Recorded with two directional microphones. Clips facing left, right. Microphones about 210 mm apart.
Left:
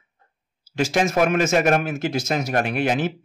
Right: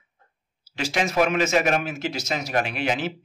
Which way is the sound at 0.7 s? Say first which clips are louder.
Left 3 dB; 45° left (ahead or behind).